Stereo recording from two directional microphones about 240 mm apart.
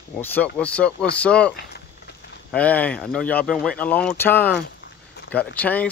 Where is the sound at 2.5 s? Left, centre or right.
Centre.